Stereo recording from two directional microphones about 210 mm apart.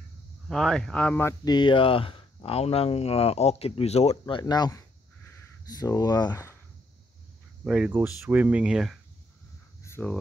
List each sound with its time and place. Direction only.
0.5 s speech: centre (ahead or behind)
7.6 s speech: 5° right (ahead or behind)
9.8 s a sound: 10° left (ahead or behind)